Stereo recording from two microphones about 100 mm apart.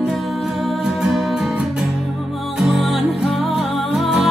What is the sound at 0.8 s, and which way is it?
Music, centre (ahead or behind).